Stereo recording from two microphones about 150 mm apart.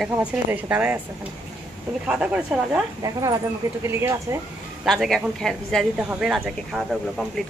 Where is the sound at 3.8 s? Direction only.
15° right (ahead or behind).